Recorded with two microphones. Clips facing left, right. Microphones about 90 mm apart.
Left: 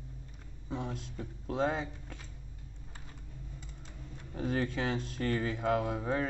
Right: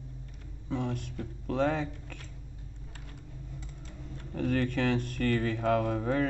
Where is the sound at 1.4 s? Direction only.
55° right (ahead or behind).